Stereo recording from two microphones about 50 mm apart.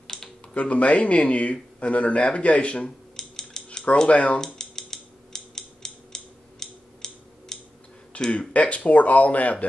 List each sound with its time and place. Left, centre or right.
0.0 s a sound: centre
0.6 s speech: left
3.2 s cutlery: centre
4.1 s speech: left
4.4 s mechanisms: centre
8.3 s speech: left